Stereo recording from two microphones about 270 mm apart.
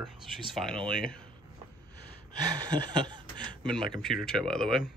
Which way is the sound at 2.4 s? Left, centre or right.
Centre.